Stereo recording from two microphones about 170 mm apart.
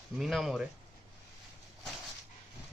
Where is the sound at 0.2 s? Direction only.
Centre (ahead or behind).